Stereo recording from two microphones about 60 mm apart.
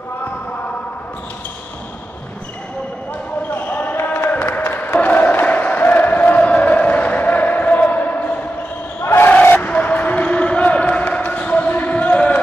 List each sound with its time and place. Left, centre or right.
3.5 s basketball bounce: left
4.3 s crowd: left
9.0 s battle cry: left
9.3 s basketball bounce: left